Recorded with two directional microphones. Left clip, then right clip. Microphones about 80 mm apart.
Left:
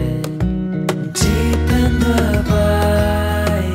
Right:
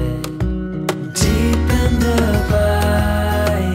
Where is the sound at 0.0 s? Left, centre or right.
Centre.